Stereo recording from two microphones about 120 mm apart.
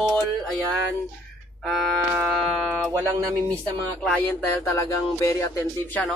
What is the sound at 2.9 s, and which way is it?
Speech, 30° right (ahead or behind).